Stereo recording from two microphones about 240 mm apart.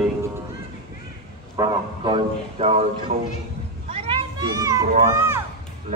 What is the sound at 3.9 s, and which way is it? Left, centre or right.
Children playing, right.